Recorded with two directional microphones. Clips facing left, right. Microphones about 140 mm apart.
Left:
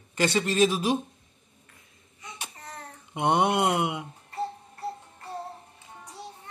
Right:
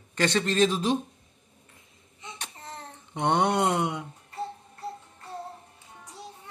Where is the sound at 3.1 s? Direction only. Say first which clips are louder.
Left 1 dB; 10° left (ahead or behind).